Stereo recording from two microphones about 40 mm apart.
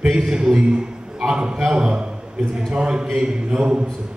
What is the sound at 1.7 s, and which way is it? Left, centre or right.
A man's voice, right.